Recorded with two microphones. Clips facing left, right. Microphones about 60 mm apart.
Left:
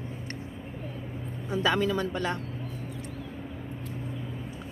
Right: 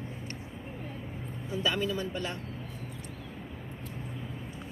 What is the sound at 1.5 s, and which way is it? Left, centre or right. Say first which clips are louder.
Speech: left 5 dB; left.